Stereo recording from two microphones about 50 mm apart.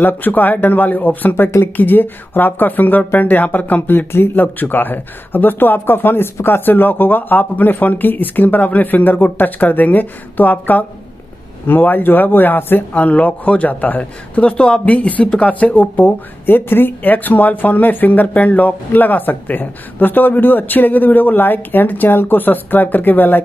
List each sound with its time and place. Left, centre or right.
0.0 s speech: left
12.9 s speech: left